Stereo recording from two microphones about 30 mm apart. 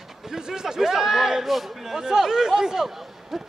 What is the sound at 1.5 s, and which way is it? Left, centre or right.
A man's voice, centre.